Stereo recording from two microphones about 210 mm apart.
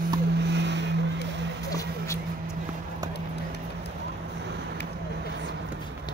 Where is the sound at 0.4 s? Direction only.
55° right (ahead or behind).